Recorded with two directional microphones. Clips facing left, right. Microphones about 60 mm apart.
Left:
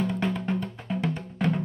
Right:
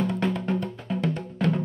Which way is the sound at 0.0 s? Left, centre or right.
Centre.